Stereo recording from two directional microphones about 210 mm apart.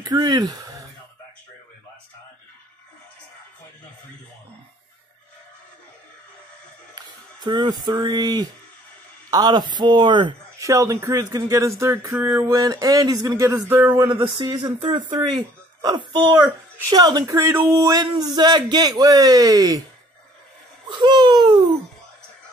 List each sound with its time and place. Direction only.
0.0 s speech: 20° right (ahead or behind)
7.0 s speech: 20° right (ahead or behind)
20.9 s speech: 20° right (ahead or behind)